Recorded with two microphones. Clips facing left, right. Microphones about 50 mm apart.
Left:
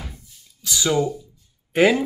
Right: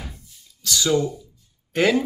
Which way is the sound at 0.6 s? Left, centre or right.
Centre.